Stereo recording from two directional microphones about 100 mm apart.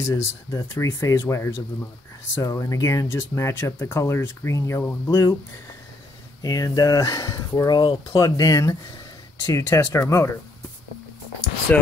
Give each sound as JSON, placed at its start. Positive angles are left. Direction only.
{"t": 0.0, "sound": "speech", "side_deg": 30}
{"t": 6.4, "sound": "speech", "side_deg": 35}
{"t": 7.7, "sound": "speech", "side_deg": 55}
{"t": 8.2, "sound": "speech", "side_deg": 35}